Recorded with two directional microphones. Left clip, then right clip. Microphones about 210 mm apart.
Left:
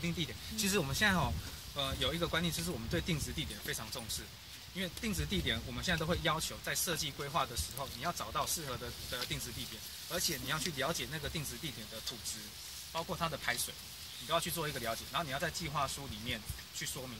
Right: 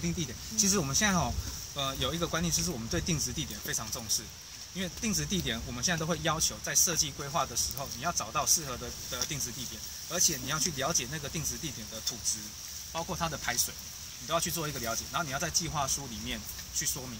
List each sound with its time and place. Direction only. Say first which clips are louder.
0.6 s speech: right 5 dB; 20° left (ahead or behind)
0.9 s speech: right 3 dB; 5° left (ahead or behind)
12.9 s speech: right 3 dB; 5° right (ahead or behind)